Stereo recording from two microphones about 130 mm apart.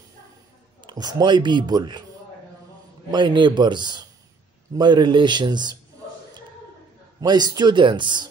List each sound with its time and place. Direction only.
0.8 s a man's voice: 30° right (ahead or behind)
3.1 s a man's voice: 35° right (ahead or behind)
7.2 s a man's voice: 30° right (ahead or behind)